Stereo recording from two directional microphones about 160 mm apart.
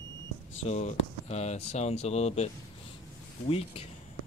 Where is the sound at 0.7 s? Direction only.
45° left (ahead or behind).